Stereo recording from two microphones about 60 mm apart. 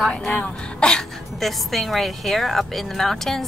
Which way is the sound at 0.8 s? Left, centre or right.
Centre.